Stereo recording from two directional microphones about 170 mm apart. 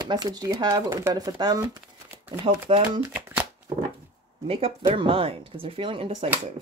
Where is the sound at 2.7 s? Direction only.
35° right (ahead or behind).